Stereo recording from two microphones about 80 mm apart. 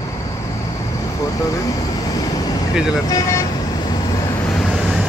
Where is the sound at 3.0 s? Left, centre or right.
Left.